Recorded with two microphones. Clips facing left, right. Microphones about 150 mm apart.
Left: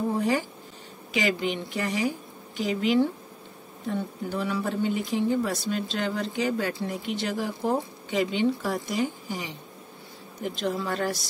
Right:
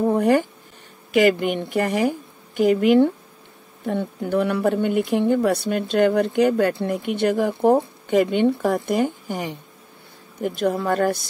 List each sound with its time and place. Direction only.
0.1 s speech: 60° right (ahead or behind)